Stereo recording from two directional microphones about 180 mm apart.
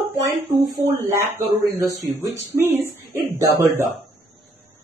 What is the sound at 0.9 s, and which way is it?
Speech, 15° right (ahead or behind).